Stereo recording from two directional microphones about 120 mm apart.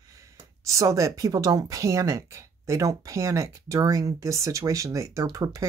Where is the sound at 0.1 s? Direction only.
25° right (ahead or behind).